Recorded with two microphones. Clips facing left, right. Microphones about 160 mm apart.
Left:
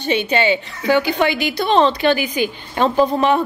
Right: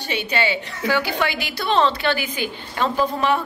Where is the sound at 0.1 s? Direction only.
20° left (ahead or behind).